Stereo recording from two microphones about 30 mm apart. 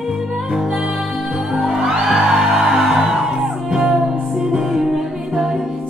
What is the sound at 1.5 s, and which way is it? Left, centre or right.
Music, centre.